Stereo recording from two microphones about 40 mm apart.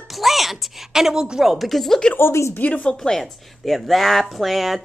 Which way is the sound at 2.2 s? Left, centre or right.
Left.